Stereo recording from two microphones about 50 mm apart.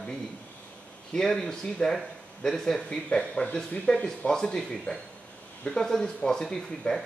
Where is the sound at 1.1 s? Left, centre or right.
Centre.